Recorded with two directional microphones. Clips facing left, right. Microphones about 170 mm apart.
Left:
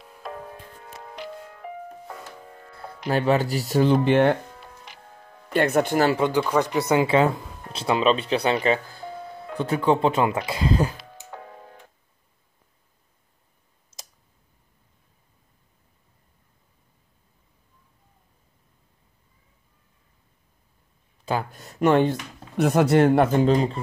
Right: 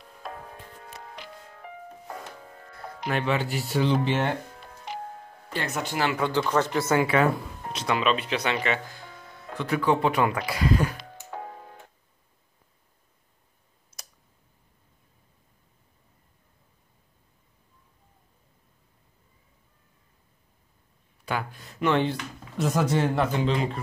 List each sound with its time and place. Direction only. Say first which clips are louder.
0.2 s music: left 3 dB; centre (ahead or behind)
2.7 s speech: left 4 dB; 30° left (ahead or behind); by 4.4 s 60° left (ahead or behind)
5.5 s speech: left 10 dB; 55° left (ahead or behind)
6.1 s speech: left 3 dB; 20° left (ahead or behind)
21.3 s speech: left 4 dB; 40° left (ahead or behind)
22.6 s speech: left 7 dB; 60° left (ahead or behind); by 23.8 s 40° left (ahead or behind)